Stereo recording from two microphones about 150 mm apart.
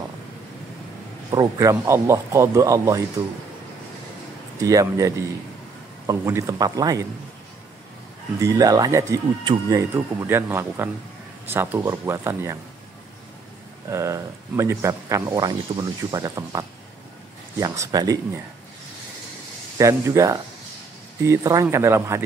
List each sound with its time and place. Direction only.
1.3 s speech: 25° right (ahead or behind)
4.6 s speech: 25° right (ahead or behind)
8.4 s speech: 25° right (ahead or behind)
13.8 s speech: 20° right (ahead or behind)
19.8 s speech: 20° right (ahead or behind)